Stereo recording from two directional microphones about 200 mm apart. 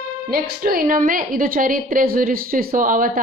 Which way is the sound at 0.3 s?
45° right (ahead or behind).